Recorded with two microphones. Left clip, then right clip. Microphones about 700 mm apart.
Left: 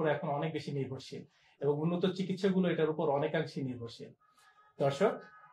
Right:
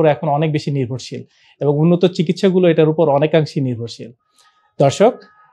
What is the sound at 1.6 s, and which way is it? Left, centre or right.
Speech, right.